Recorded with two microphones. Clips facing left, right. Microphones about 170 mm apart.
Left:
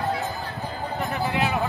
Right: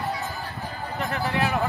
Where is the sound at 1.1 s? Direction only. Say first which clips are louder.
Even; 20° left (ahead or behind).